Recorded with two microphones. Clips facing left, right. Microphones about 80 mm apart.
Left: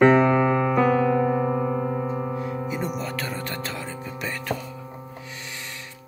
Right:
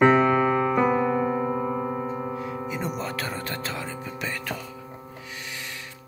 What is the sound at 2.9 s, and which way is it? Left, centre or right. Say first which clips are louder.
Music: left 1 dB; right.